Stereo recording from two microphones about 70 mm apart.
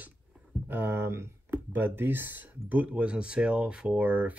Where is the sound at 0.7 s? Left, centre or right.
Right.